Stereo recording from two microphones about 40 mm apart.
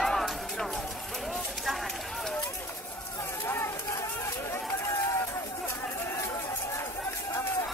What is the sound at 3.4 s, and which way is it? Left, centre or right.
Run, left.